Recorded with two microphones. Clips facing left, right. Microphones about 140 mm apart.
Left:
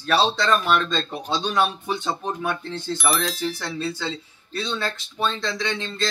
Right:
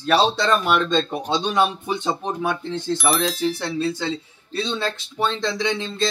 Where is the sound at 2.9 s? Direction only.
Centre (ahead or behind).